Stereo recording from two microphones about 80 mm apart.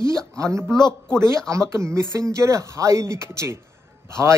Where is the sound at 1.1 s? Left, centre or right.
Right.